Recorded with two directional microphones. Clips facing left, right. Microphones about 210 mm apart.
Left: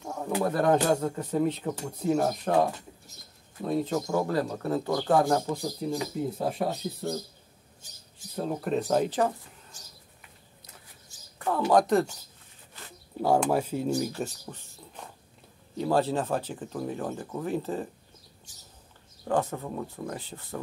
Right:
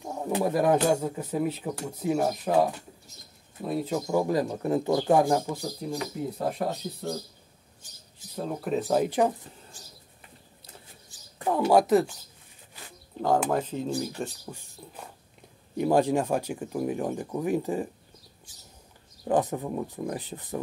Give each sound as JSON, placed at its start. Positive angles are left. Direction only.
{"t": 0.0, "sound": "speech", "side_deg": -20}
{"t": 8.4, "sound": "speech", "side_deg": 0}
{"t": 11.3, "sound": "speech", "side_deg": -15}
{"t": 13.2, "sound": "speech", "side_deg": 10}
{"t": 14.4, "sound": "speech", "side_deg": -10}
{"t": 19.2, "sound": "speech", "side_deg": -15}